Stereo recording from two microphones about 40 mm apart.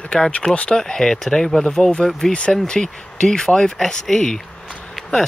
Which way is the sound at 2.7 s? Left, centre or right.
Centre.